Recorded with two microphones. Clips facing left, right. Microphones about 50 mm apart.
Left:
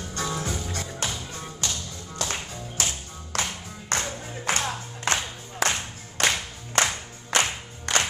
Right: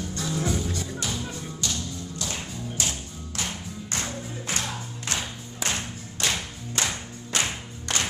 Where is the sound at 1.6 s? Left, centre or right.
Left.